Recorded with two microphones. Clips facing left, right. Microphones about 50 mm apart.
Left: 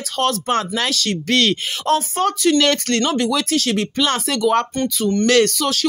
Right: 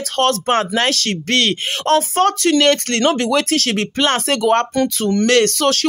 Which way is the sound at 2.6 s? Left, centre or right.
Right.